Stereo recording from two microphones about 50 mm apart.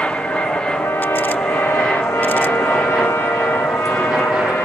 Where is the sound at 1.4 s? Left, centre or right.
Left.